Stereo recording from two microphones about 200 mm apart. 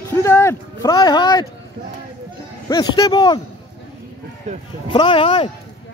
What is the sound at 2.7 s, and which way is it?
Speech, 20° left (ahead or behind).